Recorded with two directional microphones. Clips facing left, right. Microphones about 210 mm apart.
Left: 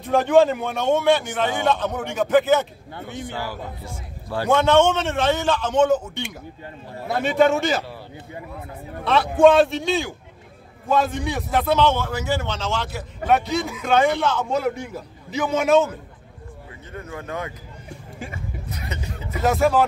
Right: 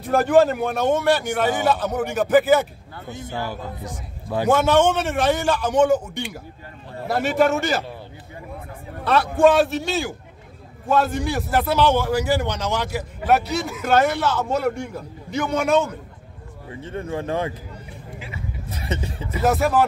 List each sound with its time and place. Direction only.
0.0 s a man's voice: 5° right (ahead or behind)
3.2 s a man's voice: 20° right (ahead or behind); by 7.8 s centre (ahead or behind)
9.0 s a man's voice: centre (ahead or behind)
13.3 s a man's voice: centre (ahead or behind)
16.8 s a man's voice: 30° right (ahead or behind)
18.7 s speech: 30° right (ahead or behind)
19.4 s a man's voice: centre (ahead or behind)